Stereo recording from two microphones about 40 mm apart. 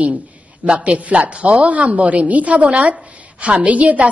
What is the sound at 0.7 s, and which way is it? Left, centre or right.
A woman's voice, right.